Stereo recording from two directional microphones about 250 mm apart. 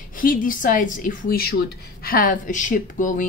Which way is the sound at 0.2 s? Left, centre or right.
Left.